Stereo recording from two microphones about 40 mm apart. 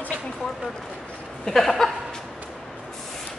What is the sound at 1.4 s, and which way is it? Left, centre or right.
Speech, centre.